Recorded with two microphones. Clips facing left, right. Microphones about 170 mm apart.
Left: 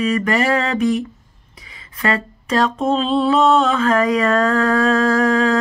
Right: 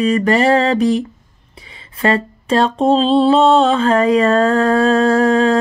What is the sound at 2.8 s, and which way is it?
Mantra, 30° right (ahead or behind).